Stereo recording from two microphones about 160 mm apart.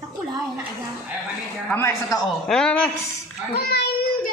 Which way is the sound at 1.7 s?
20° left (ahead or behind).